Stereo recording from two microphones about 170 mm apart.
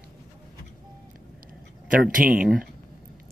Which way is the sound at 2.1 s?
55° right (ahead or behind).